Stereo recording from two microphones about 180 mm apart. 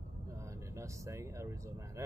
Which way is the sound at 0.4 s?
15° right (ahead or behind).